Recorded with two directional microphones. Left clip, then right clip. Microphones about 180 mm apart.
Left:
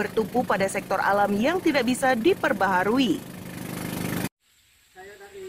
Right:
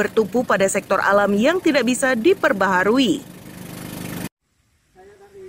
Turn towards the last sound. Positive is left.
turn(degrees=5)  # may be behind; listen again after turning